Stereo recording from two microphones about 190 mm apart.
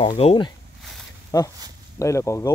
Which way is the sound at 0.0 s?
30° left (ahead or behind).